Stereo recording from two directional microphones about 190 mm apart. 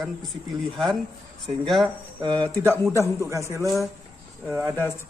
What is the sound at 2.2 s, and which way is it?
Speech, 25° right (ahead or behind).